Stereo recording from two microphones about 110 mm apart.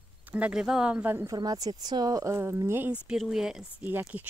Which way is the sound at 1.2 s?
35° right (ahead or behind).